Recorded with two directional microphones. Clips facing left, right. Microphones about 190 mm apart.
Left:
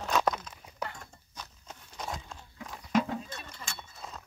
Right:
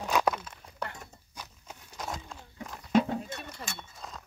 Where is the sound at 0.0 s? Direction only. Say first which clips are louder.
Right 1 dB; 10° right (ahead or behind).